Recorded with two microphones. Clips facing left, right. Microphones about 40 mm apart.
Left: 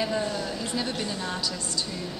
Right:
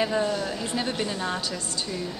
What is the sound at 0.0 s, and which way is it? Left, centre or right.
Speech, centre.